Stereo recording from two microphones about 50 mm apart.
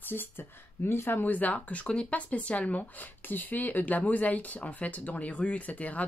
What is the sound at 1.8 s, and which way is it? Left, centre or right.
Speech, left.